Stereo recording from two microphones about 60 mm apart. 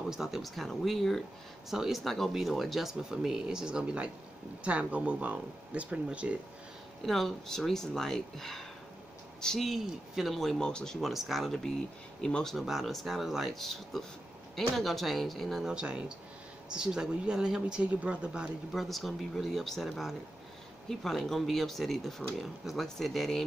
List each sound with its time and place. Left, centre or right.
0.1 s speech: centre; by 6.3 s right
7.1 s speech: centre
9.7 s speech: centre
11.0 s speech: centre
12.2 s speech: centre
12.5 s speech: centre
15.6 s speech: centre
18.7 s speech: centre